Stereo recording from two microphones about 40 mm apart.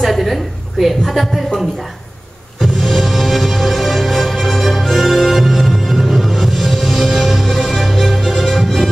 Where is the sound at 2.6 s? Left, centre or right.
Centre.